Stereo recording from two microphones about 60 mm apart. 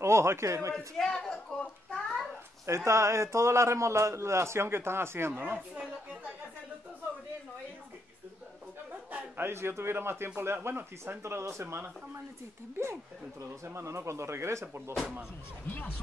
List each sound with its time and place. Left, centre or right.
0.0 s a man's voice: right
0.7 s a woman's voice: centre
2.6 s a man's voice: right
9.4 s speech: right
13.7 s a man's voice: right
15.6 s speech: left